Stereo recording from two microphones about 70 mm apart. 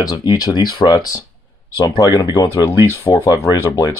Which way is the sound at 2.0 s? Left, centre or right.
Left.